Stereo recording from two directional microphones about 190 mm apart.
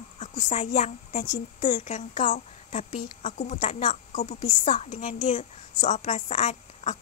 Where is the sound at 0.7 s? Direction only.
35° left (ahead or behind).